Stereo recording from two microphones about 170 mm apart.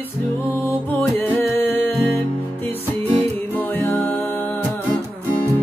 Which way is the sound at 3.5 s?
10° left (ahead or behind).